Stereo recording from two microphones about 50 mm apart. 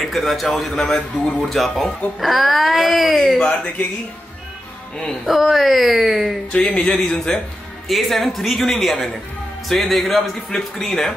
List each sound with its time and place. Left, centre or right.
0.0 s a man's voice: centre
3.3 s a man's voice: centre
5.2 s speech: centre
6.5 s speech: left
6.9 s a man's voice: centre